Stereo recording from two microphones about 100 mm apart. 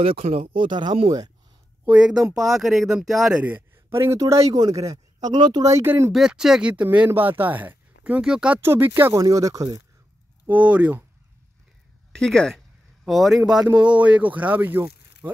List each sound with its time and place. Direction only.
0.0 s speech: 70° right (ahead or behind); by 1.0 s 50° right (ahead or behind)
1.9 s speech: 10° right (ahead or behind)
3.4 s a sound: 15° right (ahead or behind)
3.9 s speech: 30° right (ahead or behind); by 5.7 s 45° right (ahead or behind)
5.7 s speech: 30° right (ahead or behind)
6.1 s speech: 5° right (ahead or behind)
8.5 s speech: 20° right (ahead or behind)
9.2 s speech: 35° right (ahead or behind)
10.4 s speech: 15° right (ahead or behind)
12.1 s a sound: 5° left (ahead or behind)
13.7 s speech: 15° right (ahead or behind)